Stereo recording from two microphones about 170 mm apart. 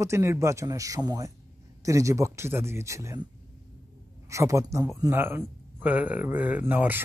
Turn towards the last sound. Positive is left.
turn(degrees=-10)  # may be behind; listen again after turning